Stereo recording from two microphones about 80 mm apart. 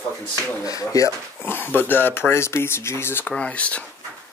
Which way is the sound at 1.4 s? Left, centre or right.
Left.